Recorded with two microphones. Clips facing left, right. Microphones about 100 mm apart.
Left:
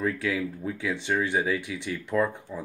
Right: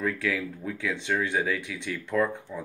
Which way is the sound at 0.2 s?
5° left (ahead or behind).